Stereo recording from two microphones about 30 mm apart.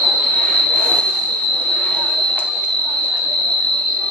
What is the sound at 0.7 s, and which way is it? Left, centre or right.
Train, left.